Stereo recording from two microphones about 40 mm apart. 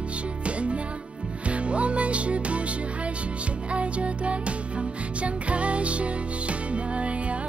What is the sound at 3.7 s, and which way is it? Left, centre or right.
Music, right.